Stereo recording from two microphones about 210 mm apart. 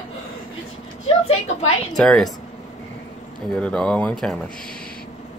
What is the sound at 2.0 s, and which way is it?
Speech, centre (ahead or behind).